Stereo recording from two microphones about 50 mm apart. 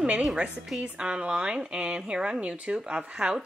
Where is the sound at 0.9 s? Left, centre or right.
Centre.